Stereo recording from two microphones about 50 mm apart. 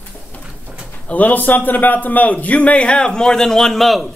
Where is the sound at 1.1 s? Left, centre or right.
Left; by 4.1 s centre.